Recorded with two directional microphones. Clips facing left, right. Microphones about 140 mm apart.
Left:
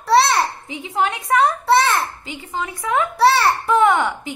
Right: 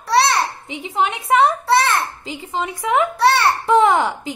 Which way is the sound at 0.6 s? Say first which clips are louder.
Right 1 dB; 25° right (ahead or behind).